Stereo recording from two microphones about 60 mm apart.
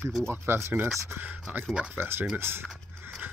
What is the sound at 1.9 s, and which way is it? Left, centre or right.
Speech, right.